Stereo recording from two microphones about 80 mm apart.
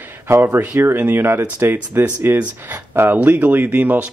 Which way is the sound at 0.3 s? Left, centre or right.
Right.